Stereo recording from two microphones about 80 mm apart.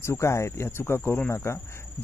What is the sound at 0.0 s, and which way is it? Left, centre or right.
Speech, left.